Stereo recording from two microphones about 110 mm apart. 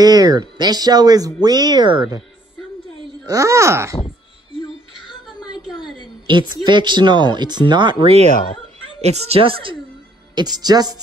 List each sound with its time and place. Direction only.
0.0 s speech: 35° right (ahead or behind)
3.3 s speech: 30° right (ahead or behind)
5.0 s a sound: 45° left (ahead or behind)
6.2 s speech: 45° right (ahead or behind)
9.0 s speech: 75° right (ahead or behind); by 9.8 s 55° right (ahead or behind)
10.3 s speech: 40° right (ahead or behind)